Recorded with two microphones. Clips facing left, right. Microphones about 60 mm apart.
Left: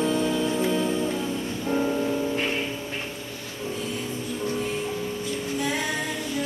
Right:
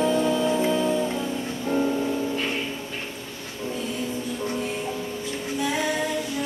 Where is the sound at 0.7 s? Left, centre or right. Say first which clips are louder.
Right 2 dB; centre.